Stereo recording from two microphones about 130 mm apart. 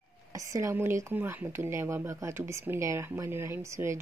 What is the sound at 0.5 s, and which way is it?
Speech, 25° right (ahead or behind).